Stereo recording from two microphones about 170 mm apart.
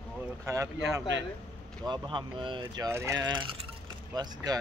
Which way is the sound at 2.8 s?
15° right (ahead or behind).